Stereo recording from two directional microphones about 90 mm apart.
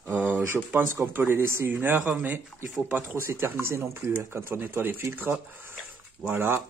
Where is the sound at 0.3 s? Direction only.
15° right (ahead or behind).